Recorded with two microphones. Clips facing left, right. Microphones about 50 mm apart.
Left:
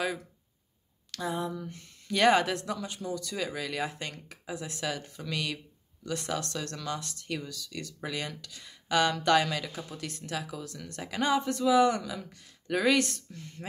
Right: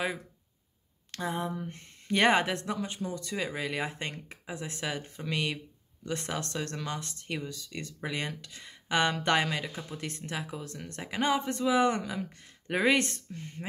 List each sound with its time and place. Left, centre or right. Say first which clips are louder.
1.1 s speech: even; right